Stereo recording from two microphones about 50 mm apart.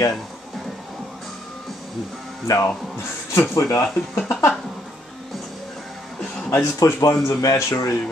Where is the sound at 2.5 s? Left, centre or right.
Left.